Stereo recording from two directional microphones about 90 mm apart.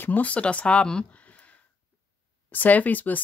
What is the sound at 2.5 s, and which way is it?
Speech, 20° left (ahead or behind).